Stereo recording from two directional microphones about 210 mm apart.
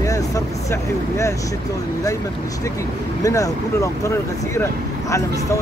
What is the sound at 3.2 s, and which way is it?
Speech, 15° left (ahead or behind).